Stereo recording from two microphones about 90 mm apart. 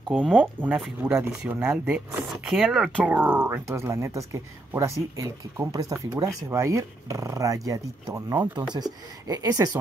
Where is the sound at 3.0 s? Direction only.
20° right (ahead or behind).